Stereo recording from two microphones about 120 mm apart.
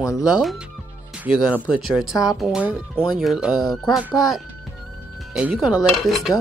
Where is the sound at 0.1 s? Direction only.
5° right (ahead or behind).